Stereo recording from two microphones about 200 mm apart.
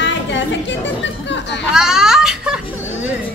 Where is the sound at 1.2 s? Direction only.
60° left (ahead or behind).